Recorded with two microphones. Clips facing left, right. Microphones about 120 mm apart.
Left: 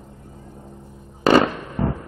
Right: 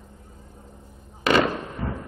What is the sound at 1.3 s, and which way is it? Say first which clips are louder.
Fireworks: left 5 dB; 40° left (ahead or behind).